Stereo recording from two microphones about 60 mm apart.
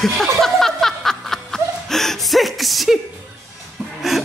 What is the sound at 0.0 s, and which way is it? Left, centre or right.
Snicker, centre.